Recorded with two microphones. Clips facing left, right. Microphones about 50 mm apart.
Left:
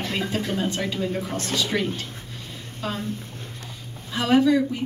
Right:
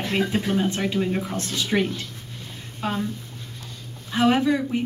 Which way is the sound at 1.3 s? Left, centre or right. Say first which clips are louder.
Left 1 dB; left.